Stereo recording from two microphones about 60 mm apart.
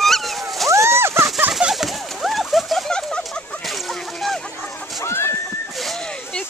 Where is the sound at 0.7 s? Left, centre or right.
Right.